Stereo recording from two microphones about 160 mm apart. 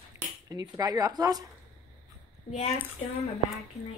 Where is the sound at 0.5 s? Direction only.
25° right (ahead or behind).